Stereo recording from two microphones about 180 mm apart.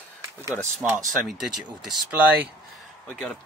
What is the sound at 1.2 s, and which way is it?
Speech, centre (ahead or behind).